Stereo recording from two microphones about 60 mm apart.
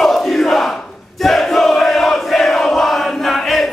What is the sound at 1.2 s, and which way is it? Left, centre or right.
Battle cry, centre.